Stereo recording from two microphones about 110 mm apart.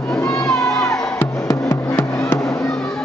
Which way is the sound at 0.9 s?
25° left (ahead or behind).